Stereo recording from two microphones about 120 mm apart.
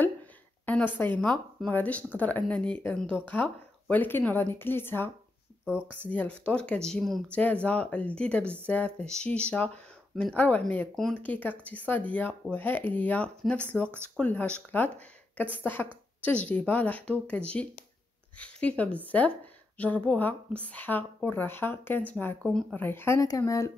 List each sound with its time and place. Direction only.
0.7 s a woman's voice: 15° left (ahead or behind)
22.5 s speech: 5° left (ahead or behind)
22.8 s speech: 20° left (ahead or behind)